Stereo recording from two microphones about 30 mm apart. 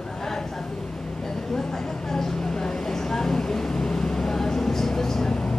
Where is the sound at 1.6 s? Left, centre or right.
Centre.